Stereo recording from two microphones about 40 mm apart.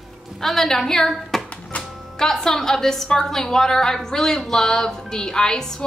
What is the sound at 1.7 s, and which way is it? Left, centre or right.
Music, left.